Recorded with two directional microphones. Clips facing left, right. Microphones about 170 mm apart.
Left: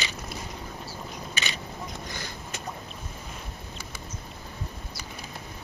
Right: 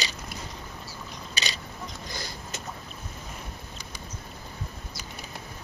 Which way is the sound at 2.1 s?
35° right (ahead or behind).